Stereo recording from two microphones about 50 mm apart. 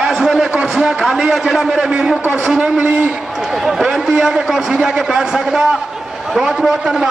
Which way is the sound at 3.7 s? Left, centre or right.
Centre.